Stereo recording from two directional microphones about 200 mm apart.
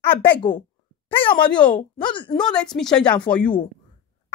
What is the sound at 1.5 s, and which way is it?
Speech, 5° left (ahead or behind).